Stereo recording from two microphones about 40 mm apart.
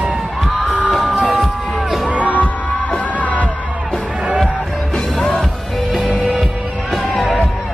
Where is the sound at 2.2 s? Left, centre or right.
Left.